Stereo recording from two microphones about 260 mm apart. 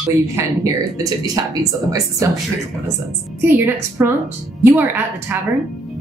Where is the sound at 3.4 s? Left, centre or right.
Centre.